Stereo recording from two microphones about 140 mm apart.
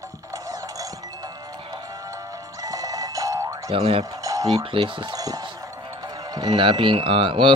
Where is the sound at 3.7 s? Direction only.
45° right (ahead or behind).